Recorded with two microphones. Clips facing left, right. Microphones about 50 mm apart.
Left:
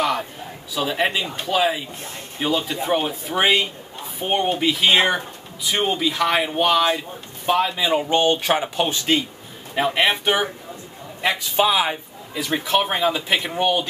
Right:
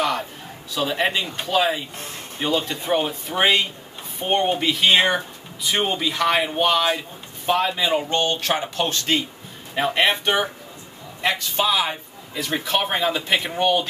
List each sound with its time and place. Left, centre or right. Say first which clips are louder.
0.7 s speech: even; centre